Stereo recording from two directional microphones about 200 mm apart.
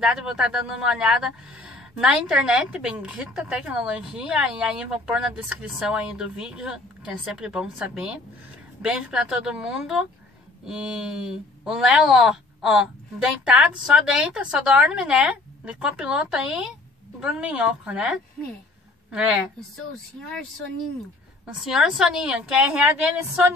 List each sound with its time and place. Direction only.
0.0 s a woman's voice: 5° right (ahead or behind)
21.6 s speech: centre (ahead or behind)